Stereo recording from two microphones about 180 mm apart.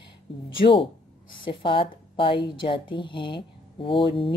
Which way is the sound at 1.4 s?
30° left (ahead or behind).